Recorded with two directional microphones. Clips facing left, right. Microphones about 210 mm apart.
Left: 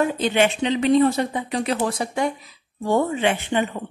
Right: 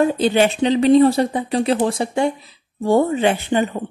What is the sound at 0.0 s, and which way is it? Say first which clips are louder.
A woman's voice: right 4 dB; 35° right (ahead or behind).